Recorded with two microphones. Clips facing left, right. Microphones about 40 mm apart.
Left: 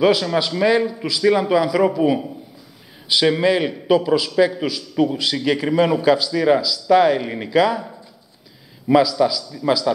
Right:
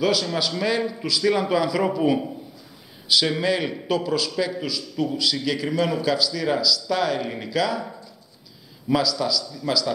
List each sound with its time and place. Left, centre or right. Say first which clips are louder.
0.0 s a man's voice: left 6 dB; centre
3.1 s a man's voice: left 5 dB; centre
8.9 s a man's voice: left 7 dB; centre